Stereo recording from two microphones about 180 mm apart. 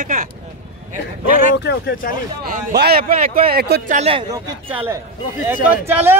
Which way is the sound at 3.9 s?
30° right (ahead or behind).